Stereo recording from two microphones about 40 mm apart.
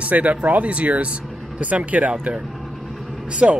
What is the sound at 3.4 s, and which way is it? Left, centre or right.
Speech, right.